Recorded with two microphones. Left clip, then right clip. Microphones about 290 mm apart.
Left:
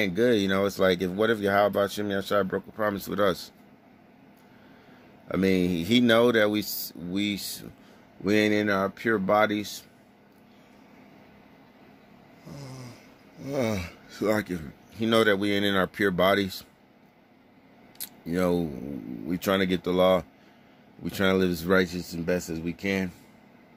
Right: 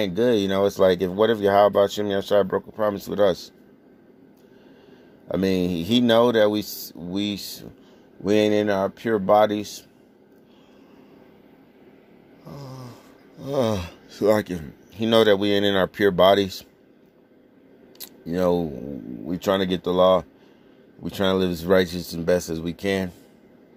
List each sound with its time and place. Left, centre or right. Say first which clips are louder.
0.0 s speech: right 3 dB; centre
5.3 s speech: right 2 dB; centre
12.4 s dog: right 4 dB; centre
13.4 s speech: right 5 dB; centre
17.9 s a sound: right 3 dB; centre
19.2 s speech: right 3 dB; centre